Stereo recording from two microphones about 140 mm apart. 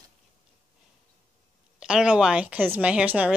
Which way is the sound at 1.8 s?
5° right (ahead or behind).